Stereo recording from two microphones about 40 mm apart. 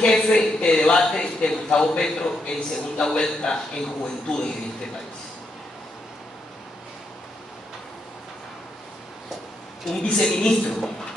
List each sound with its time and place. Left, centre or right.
0.0 s a man's voice: left
10.0 s a man's voice: left